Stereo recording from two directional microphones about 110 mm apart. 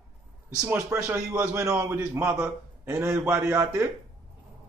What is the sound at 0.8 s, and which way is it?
A man's voice, 25° right (ahead or behind).